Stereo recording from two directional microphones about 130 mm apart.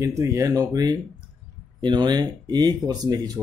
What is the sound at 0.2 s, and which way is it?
Speech, 25° right (ahead or behind).